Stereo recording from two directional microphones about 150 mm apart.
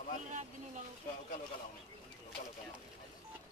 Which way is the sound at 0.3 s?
55° right (ahead or behind).